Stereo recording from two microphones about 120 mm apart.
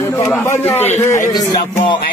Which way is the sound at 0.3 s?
20° left (ahead or behind).